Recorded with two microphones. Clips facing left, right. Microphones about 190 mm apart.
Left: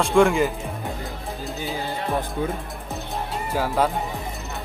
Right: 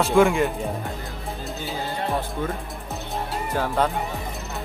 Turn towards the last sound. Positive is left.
turn(degrees=5)  # may be behind; listen again after turning